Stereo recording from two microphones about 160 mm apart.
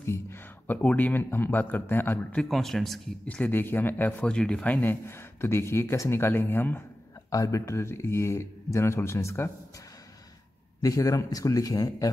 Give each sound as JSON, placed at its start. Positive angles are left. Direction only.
{"t": 0.0, "sound": "speech", "side_deg": 15}
{"t": 2.4, "sound": "speech", "side_deg": 0}
{"t": 10.8, "sound": "speech", "side_deg": 20}